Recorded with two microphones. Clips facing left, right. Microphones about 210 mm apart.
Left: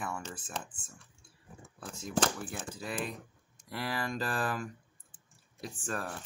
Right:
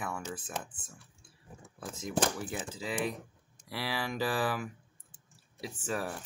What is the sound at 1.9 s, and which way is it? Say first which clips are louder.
Speech: even; 15° right (ahead or behind).